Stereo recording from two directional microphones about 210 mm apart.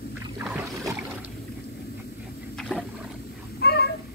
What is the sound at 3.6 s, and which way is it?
Cat, 50° left (ahead or behind).